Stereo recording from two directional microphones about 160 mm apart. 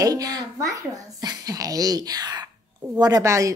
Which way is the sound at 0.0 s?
25° right (ahead or behind).